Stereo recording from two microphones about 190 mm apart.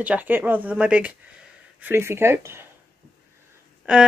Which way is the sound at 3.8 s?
5° right (ahead or behind).